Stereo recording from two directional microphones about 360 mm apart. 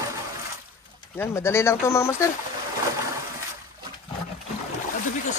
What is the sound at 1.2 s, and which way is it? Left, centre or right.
Speech, centre.